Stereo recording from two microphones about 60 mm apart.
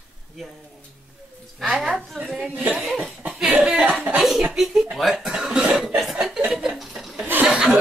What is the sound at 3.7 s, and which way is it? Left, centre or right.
Speech, centre.